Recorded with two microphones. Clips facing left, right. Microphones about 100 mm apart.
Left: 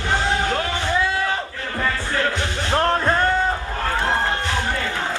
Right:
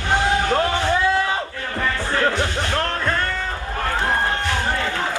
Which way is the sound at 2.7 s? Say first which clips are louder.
Left 4 dB; 30° left (ahead or behind).